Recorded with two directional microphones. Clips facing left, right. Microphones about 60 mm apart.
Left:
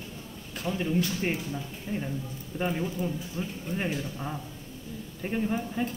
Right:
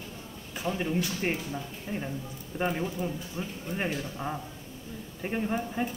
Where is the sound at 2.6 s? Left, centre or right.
Right.